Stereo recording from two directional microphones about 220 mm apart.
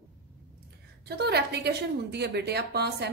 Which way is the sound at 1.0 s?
50° right (ahead or behind).